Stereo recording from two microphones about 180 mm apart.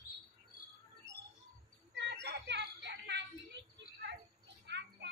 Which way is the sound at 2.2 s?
70° right (ahead or behind).